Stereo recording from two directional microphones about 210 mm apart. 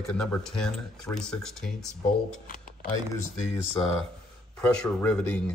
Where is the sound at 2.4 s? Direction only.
40° left (ahead or behind).